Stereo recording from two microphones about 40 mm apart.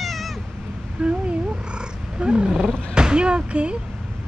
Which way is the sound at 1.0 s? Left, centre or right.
Right.